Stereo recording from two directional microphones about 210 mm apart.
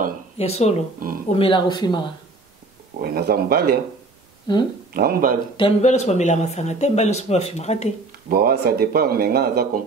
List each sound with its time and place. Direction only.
0.4 s speech: 30° left (ahead or behind)
0.9 s speech: 40° right (ahead or behind)
1.3 s speech: 25° left (ahead or behind)
3.0 s speech: 50° right (ahead or behind)
4.5 s speech: 20° left (ahead or behind)
4.9 s speech: 45° right (ahead or behind)
5.6 s speech: 35° left (ahead or behind)
8.3 s speech: 45° right (ahead or behind)